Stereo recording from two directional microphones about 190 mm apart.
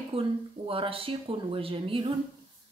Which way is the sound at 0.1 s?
30° right (ahead or behind).